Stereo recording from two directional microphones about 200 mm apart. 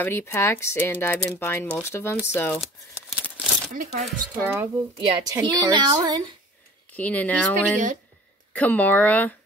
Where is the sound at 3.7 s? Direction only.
40° right (ahead or behind).